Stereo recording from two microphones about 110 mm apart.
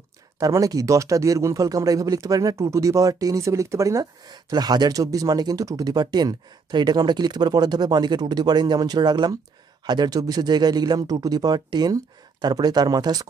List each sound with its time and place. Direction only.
0.4 s speech: 35° right (ahead or behind)